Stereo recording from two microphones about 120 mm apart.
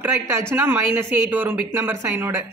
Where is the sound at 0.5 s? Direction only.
20° right (ahead or behind).